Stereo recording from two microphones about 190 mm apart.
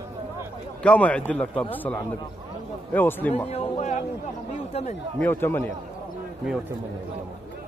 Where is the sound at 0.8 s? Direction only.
5° left (ahead or behind).